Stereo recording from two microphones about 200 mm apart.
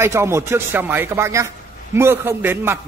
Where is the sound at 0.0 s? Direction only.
15° right (ahead or behind).